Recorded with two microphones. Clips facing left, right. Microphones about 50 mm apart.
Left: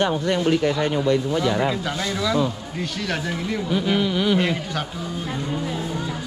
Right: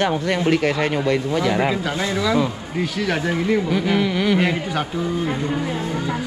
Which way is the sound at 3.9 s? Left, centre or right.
Right.